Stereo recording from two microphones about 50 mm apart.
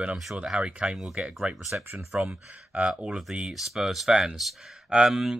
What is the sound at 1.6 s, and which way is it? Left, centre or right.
Speech, centre.